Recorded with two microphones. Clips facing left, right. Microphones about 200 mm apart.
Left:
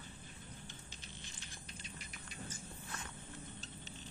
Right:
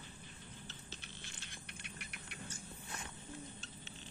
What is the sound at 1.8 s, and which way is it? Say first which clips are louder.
Cricket: even; 65° right (ahead or behind).